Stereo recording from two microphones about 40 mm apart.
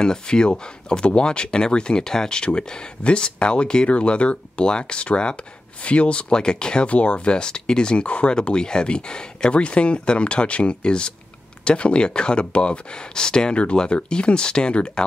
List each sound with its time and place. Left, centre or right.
0.0 s speech: centre